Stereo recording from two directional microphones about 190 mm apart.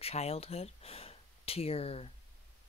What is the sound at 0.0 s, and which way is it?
Speech, 35° left (ahead or behind).